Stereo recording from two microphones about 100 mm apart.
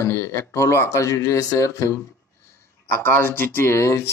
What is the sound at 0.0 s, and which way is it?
Speech, 30° left (ahead or behind).